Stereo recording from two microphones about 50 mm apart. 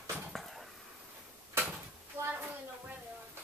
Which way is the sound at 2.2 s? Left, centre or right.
Right.